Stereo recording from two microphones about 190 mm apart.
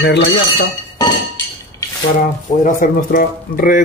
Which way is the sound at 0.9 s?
20° left (ahead or behind).